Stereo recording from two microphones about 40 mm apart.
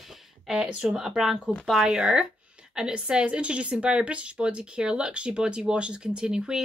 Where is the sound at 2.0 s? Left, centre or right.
Right.